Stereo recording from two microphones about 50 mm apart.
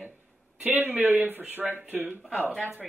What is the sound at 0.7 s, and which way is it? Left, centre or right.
Speech, right.